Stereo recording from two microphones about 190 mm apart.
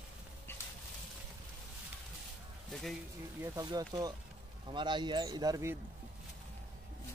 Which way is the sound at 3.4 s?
20° right (ahead or behind).